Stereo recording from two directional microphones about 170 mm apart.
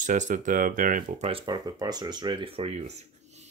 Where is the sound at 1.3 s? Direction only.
25° right (ahead or behind).